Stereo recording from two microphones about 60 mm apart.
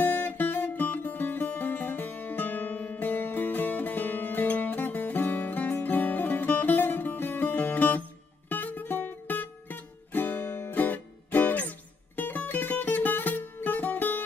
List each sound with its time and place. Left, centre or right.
0.0 s music: left